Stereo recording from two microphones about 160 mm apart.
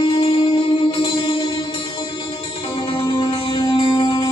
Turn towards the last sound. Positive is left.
turn(degrees=25)  # may be behind; listen again after turning